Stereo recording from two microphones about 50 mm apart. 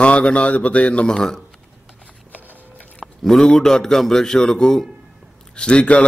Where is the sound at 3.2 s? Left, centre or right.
Centre.